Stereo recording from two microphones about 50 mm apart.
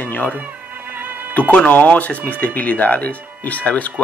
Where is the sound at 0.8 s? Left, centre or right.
Right.